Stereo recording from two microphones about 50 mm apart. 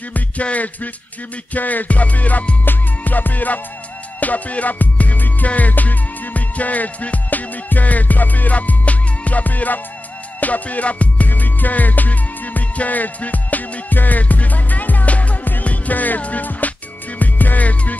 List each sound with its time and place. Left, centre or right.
0.1 s music: left